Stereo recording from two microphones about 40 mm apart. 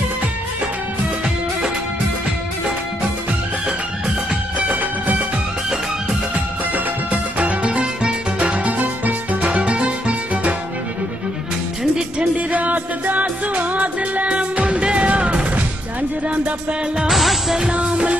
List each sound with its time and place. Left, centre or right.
4.6 s music: right
6.7 s music: right
7.7 s music: right
12.4 s music: right
17.1 s music: centre
17.6 s music: right